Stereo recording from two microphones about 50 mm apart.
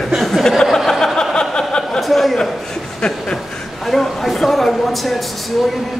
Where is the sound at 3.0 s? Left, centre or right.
Centre.